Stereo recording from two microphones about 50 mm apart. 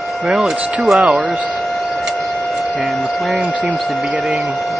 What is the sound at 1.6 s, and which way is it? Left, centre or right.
Printer, centre.